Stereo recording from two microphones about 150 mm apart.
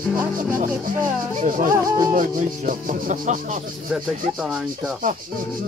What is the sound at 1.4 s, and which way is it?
Music, 65° right (ahead or behind).